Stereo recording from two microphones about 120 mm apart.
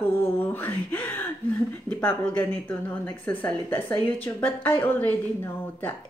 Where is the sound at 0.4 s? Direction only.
15° left (ahead or behind).